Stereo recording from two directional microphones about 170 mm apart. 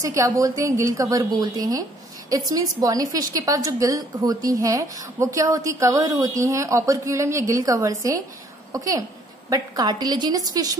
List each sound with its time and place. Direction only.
0.0 s a woman's voice: 20° right (ahead or behind)